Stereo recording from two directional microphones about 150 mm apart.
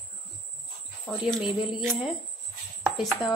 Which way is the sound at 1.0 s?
Centre (ahead or behind).